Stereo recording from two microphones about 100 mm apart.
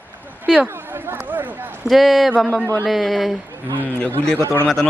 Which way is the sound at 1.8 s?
Centre (ahead or behind).